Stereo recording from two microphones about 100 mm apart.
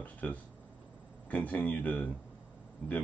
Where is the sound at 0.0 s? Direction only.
15° left (ahead or behind).